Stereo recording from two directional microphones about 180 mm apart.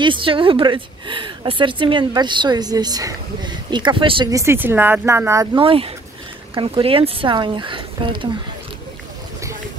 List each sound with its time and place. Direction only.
0.0 s a woman's voice: 30° right (ahead or behind)
5.6 s a woman's voice: 30° right (ahead or behind)